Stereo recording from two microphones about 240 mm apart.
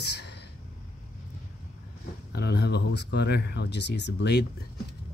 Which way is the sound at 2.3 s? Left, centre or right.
Left.